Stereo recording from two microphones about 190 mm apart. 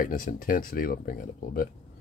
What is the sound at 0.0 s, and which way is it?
Speech, 45° left (ahead or behind).